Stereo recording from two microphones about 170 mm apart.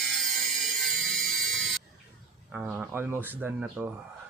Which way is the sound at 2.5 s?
10° right (ahead or behind).